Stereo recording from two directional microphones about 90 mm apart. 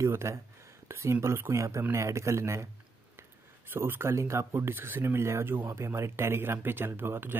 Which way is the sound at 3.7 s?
25° right (ahead or behind).